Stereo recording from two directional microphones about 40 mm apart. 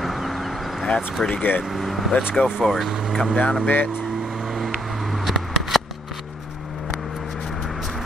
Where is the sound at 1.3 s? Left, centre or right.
Left.